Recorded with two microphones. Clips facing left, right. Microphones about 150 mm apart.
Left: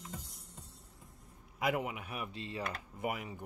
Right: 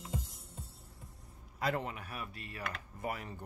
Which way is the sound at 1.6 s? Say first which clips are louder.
Left 1 dB; 15° left (ahead or behind).